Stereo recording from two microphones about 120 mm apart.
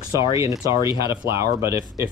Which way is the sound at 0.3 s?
25° right (ahead or behind).